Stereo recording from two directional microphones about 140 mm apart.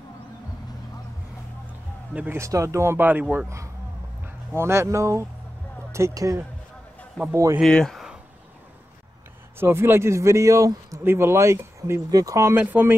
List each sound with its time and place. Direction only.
2.1 s a man's voice: 15° right (ahead or behind)
7.6 s speech: 5° left (ahead or behind)
9.6 s a man's voice: 15° right (ahead or behind)